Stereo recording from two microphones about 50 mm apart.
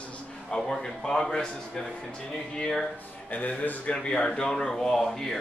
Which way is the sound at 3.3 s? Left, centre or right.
Left.